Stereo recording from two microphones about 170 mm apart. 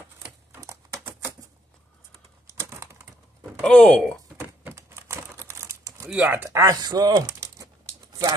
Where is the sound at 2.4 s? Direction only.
15° right (ahead or behind).